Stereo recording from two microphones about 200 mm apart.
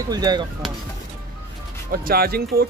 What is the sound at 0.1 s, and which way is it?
Speech, 20° right (ahead or behind).